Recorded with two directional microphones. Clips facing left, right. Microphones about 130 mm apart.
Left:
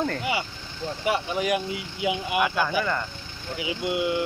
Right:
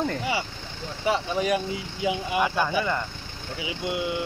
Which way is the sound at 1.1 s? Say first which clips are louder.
Right 1 dB; 10° left (ahead or behind).